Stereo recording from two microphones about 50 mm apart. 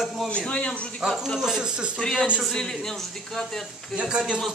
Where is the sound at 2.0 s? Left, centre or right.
Centre.